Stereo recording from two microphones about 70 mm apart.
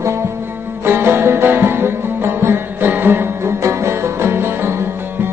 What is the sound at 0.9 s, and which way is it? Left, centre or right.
Music, right.